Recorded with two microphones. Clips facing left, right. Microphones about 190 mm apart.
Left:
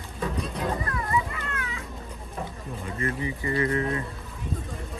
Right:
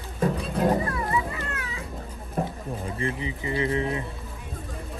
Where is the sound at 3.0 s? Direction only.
20° right (ahead or behind).